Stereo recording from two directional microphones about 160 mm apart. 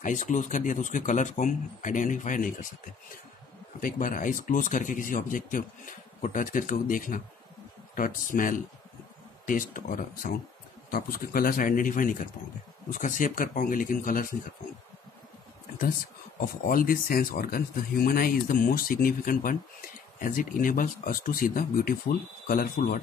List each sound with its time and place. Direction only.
0.0 s speech: 55° left (ahead or behind)
3.8 s speech: 60° left (ahead or behind)
16.3 s speech: 65° left (ahead or behind)